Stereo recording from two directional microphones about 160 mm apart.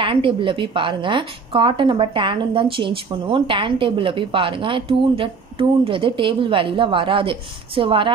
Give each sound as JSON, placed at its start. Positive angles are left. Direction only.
{"t": 0.0, "sound": "a woman's voice", "side_deg": -35}